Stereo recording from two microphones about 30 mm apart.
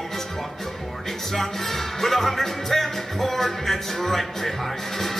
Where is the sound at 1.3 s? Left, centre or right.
Centre.